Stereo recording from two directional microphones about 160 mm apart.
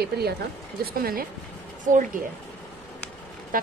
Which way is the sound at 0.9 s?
65° right (ahead or behind).